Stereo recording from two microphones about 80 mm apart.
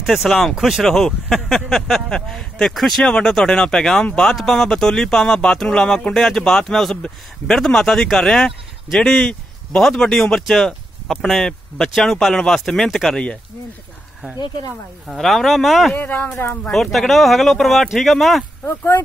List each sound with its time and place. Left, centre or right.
0.0 s speech: centre
15.0 s speech: centre
15.9 s speech: left
16.7 s speech: centre
18.7 s speech: left